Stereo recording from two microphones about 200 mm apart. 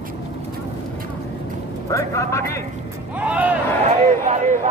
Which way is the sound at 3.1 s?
5° right (ahead or behind).